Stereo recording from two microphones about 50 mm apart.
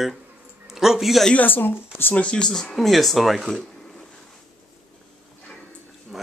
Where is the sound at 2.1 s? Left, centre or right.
Left.